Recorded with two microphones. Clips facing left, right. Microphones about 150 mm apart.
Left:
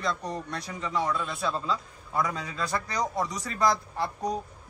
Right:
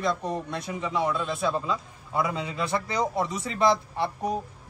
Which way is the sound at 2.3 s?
20° right (ahead or behind).